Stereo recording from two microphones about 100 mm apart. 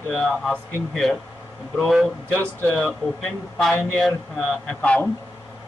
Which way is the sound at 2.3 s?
10° left (ahead or behind).